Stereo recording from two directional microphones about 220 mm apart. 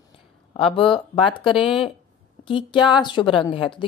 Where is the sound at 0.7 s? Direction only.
25° left (ahead or behind).